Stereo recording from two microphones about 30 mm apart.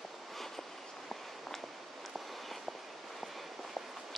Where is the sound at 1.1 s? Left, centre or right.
Centre.